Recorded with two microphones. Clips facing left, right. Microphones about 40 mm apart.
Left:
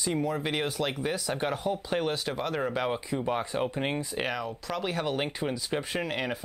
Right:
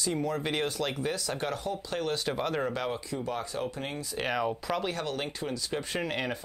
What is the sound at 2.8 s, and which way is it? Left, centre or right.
Speech, left.